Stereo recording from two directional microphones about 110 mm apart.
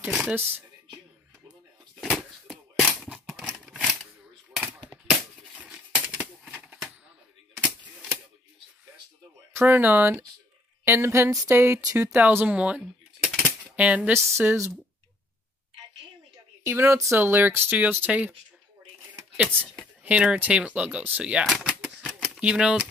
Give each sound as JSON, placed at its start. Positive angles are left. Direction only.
{"t": 0.1, "sound": "speech", "side_deg": -10}
{"t": 0.4, "sound": "speech", "side_deg": -20}
{"t": 2.0, "sound": "a sound", "side_deg": 0}
{"t": 5.6, "sound": "a sound", "side_deg": -5}
{"t": 9.5, "sound": "speech", "side_deg": -20}
{"t": 14.1, "sound": "speech", "side_deg": -25}
{"t": 16.6, "sound": "speech", "side_deg": -25}
{"t": 19.3, "sound": "speech", "side_deg": -15}
{"t": 21.6, "sound": "typewriter", "side_deg": -5}
{"t": 22.0, "sound": "shuffling cards", "side_deg": 5}
{"t": 22.4, "sound": "speech", "side_deg": -10}